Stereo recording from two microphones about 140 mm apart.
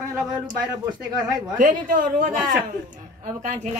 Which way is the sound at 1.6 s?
70° right (ahead or behind).